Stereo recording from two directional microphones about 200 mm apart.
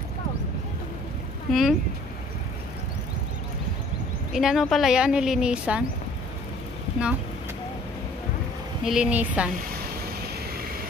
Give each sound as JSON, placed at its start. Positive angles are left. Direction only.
{"t": 1.5, "sound": "speech", "side_deg": 0}
{"t": 4.3, "sound": "speech", "side_deg": 0}
{"t": 8.8, "sound": "speech", "side_deg": -5}